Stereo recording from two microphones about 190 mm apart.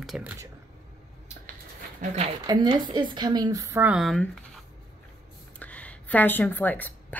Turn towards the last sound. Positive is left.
turn(degrees=10)  # may be behind; listen again after turning